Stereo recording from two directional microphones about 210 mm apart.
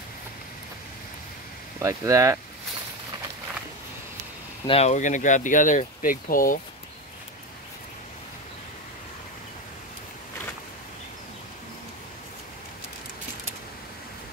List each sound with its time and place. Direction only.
1.8 s speech: 15° right (ahead or behind)
4.6 s speech: 30° left (ahead or behind)